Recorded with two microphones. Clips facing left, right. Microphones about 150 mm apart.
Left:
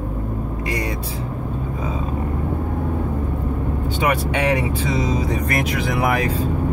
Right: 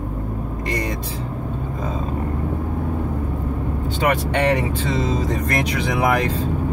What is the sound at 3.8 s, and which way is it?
Speech, 10° left (ahead or behind).